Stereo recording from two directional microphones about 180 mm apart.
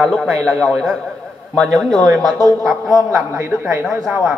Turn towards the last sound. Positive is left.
turn(degrees=-5)  # may be behind; listen again after turning